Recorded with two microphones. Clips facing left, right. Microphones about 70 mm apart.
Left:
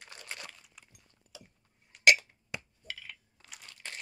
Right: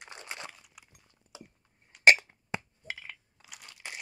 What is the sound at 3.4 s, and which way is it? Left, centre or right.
Crunch, centre.